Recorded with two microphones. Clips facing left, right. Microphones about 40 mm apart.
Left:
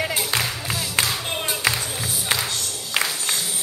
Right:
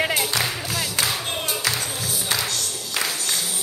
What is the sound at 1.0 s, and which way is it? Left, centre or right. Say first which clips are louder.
Clapping: even; centre.